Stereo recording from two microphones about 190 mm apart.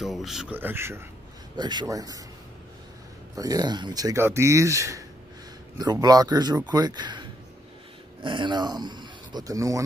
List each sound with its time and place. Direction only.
0.0 s speech: centre (ahead or behind); by 2.2 s 20° right (ahead or behind)
3.3 s speech: 20° right (ahead or behind)